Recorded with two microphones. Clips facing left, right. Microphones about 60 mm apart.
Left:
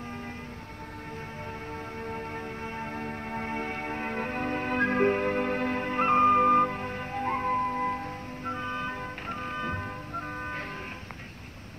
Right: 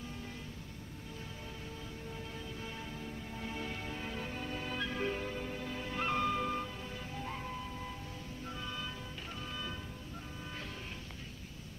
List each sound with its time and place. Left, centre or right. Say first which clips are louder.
2.0 s music: left 9 dB; left